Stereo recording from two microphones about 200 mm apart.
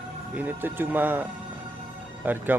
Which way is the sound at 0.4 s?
10° right (ahead or behind).